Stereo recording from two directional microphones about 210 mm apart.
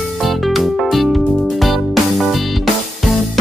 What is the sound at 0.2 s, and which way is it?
Music, centre (ahead or behind).